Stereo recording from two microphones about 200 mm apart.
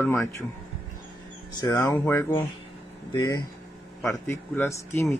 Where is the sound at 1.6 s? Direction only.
15° left (ahead or behind).